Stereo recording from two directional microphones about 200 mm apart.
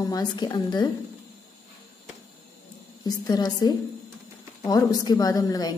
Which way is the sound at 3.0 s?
20° left (ahead or behind).